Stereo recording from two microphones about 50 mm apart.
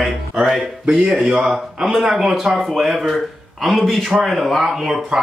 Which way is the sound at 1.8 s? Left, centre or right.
Centre.